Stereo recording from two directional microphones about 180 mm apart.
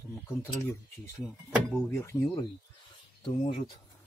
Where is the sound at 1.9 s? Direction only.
15° left (ahead or behind).